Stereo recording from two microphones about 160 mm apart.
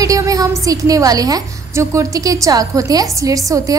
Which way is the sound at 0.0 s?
20° right (ahead or behind).